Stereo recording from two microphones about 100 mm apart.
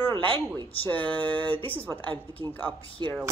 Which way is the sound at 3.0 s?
45° right (ahead or behind).